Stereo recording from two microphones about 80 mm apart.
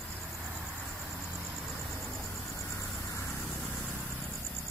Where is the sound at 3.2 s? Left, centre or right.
Left.